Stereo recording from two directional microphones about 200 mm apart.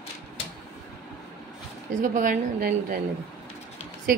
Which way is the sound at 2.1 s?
45° right (ahead or behind).